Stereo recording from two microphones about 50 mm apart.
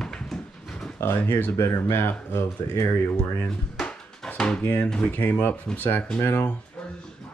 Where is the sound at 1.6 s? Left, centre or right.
Left.